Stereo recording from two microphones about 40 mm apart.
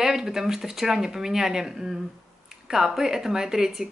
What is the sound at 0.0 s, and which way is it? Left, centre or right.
Speech, centre.